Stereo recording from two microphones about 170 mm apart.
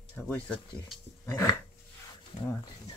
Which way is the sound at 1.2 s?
15° left (ahead or behind).